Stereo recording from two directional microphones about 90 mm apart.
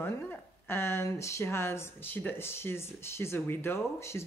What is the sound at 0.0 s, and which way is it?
Speech, 25° left (ahead or behind).